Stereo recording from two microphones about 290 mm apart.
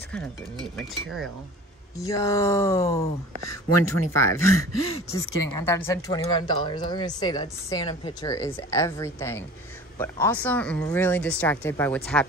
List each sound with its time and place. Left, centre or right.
0.1 s a woman's voice: centre
3.4 s speech: left
5.1 s a woman's voice: centre